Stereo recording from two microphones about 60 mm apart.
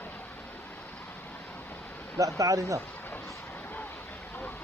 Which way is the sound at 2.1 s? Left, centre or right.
Right.